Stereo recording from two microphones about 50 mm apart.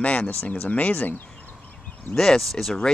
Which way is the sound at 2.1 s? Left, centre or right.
Centre.